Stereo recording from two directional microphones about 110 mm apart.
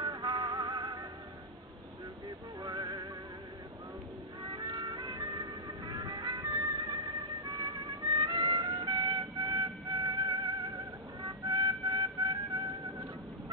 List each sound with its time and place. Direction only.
0.0 s music: 40° right (ahead or behind)
2.6 s music: 40° right (ahead or behind)
4.4 s music: 40° right (ahead or behind)
11.2 s vehicle: 40° right (ahead or behind)